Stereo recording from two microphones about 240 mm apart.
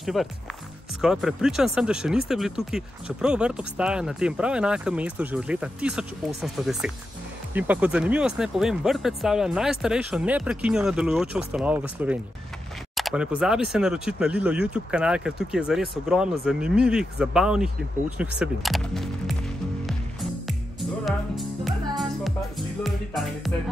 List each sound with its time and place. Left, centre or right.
0.0 s speech: centre
21.0 s music: centre